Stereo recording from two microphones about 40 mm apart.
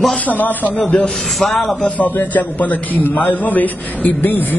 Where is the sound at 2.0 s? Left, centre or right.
Left.